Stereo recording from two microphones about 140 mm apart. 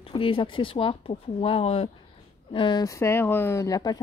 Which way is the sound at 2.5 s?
35° left (ahead or behind).